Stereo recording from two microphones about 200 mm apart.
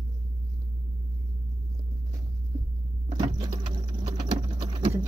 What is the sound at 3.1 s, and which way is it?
Vehicle, 20° right (ahead or behind).